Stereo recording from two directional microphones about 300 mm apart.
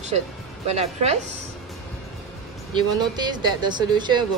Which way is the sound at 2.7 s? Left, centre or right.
Centre.